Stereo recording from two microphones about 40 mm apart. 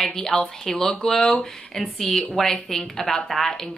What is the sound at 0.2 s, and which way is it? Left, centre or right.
Speech, centre.